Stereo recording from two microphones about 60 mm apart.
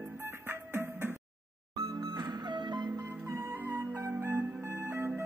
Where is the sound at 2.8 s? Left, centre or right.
Right.